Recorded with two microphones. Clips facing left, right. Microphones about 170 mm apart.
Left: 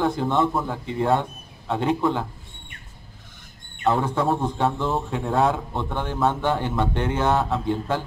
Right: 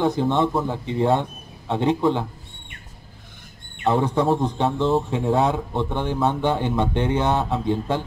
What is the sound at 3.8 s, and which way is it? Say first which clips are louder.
A man's voice: right 2 dB; 20° right (ahead or behind).